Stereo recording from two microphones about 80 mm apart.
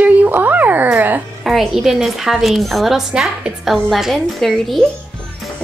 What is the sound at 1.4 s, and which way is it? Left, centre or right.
A woman's voice, centre.